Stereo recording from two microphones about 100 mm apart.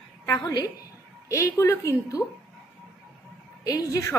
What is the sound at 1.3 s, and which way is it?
Speech, 30° left (ahead or behind).